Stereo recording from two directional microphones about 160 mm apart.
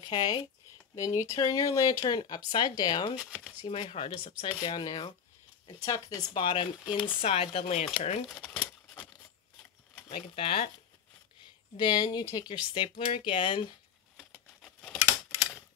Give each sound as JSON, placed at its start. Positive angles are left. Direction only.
{"t": 0.1, "sound": "speech", "side_deg": 30}
{"t": 3.2, "sound": "speech", "side_deg": -5}
{"t": 3.6, "sound": "speech", "side_deg": 35}
{"t": 6.3, "sound": "speech", "side_deg": 35}
{"t": 8.3, "sound": "a sound", "side_deg": 10}
{"t": 10.0, "sound": "speech", "side_deg": 35}
{"t": 11.7, "sound": "speech", "side_deg": 25}